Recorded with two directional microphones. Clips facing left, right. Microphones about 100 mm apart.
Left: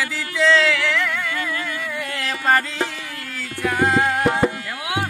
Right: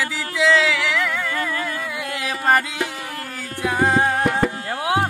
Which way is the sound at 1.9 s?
10° right (ahead or behind).